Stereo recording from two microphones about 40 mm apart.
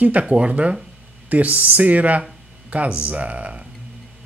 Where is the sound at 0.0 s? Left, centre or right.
Right.